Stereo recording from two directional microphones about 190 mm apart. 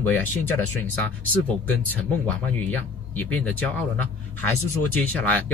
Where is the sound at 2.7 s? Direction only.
10° left (ahead or behind).